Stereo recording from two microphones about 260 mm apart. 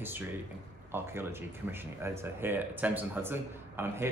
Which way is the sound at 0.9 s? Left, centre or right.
Centre.